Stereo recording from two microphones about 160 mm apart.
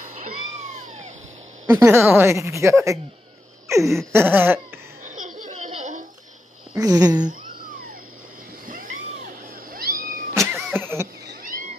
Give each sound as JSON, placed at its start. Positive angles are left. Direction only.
{"t": 1.7, "sound": "a woman's voice", "side_deg": -15}
{"t": 5.0, "sound": "laughter", "side_deg": -55}
{"t": 5.7, "sound": "a sound", "side_deg": -50}
{"t": 6.8, "sound": "speech", "side_deg": -25}
{"t": 8.6, "sound": "cat", "side_deg": -55}
{"t": 10.3, "sound": "a sound", "side_deg": -15}